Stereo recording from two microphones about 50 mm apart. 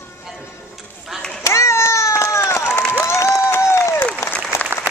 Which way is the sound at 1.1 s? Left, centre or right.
Centre.